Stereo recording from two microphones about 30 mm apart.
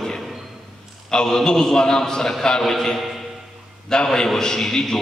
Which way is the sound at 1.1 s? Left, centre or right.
Left.